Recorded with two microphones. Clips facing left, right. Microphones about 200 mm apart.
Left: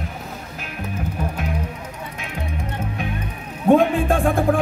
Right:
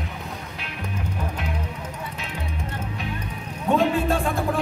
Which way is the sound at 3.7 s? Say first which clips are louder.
Left 5 dB; 50° left (ahead or behind).